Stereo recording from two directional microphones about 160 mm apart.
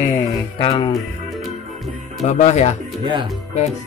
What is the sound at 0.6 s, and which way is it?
Speech, 35° left (ahead or behind).